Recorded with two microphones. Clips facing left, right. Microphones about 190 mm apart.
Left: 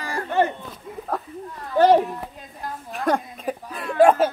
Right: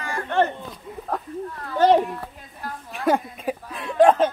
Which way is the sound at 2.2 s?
20° left (ahead or behind).